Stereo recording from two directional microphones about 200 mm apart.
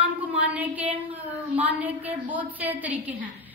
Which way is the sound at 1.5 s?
10° right (ahead or behind).